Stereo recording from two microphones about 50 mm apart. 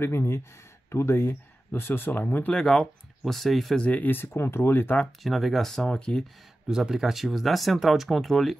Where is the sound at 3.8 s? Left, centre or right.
Left.